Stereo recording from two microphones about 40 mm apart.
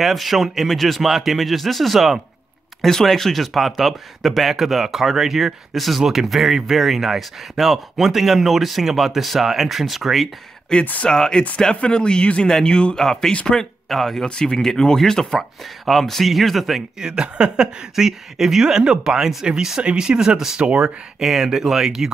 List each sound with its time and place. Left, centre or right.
0.0 s speech: centre
10.7 s speech: centre
12.9 s speech: centre
14.2 s speech: left; by 16.8 s centre
17.0 s speech: right
17.9 s speech: centre
20.2 s speech: centre
20.6 s speech: right
21.2 s speech: centre